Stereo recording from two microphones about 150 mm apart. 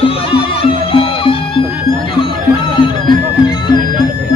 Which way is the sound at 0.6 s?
35° left (ahead or behind).